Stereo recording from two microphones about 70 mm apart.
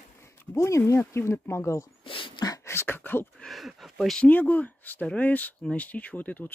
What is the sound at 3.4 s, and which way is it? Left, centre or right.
Speech, centre.